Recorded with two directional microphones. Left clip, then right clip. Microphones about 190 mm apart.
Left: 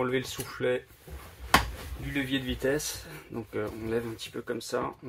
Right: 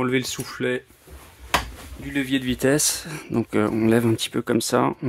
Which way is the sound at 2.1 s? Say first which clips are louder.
Right 7 dB; 60° right (ahead or behind).